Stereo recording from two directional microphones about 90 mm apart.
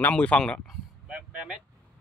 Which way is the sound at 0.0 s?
15° left (ahead or behind).